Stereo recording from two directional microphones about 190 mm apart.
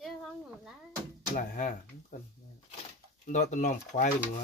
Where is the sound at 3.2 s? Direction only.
40° left (ahead or behind).